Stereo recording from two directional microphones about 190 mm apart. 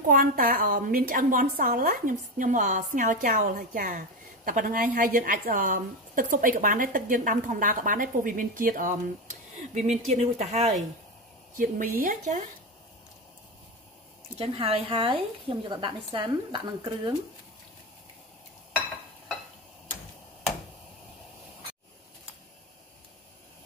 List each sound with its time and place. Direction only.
0.0 s a woman's voice: 45° right (ahead or behind)
11.5 s a woman's voice: 50° right (ahead or behind)
14.4 s a woman's voice: 30° right (ahead or behind)